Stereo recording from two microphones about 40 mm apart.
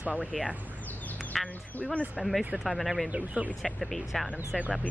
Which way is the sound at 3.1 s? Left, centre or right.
Right.